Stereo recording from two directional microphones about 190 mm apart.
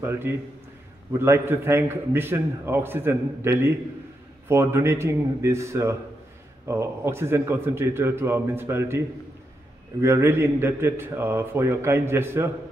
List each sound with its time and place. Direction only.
0.0 s a man's voice: 10° right (ahead or behind)